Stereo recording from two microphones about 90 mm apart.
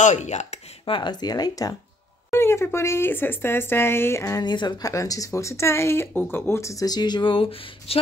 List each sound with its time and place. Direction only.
0.8 s speech: 65° left (ahead or behind); by 1.8 s 45° left (ahead or behind)
2.3 s speech: 25° left (ahead or behind)
4.4 s speech: 50° left (ahead or behind); by 8.0 s 90° left